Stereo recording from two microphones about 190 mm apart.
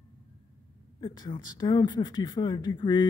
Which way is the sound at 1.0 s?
25° left (ahead or behind).